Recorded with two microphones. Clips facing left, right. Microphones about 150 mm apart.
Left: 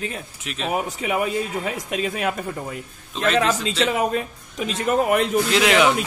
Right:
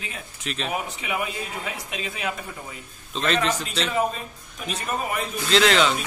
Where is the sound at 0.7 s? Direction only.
40° left (ahead or behind).